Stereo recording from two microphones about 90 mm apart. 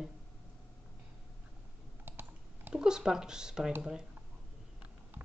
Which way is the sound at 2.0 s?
20° right (ahead or behind).